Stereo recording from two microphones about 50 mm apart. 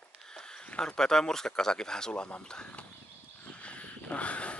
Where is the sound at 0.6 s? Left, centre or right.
Centre.